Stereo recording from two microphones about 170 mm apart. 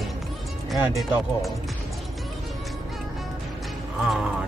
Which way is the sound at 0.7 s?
Centre (ahead or behind).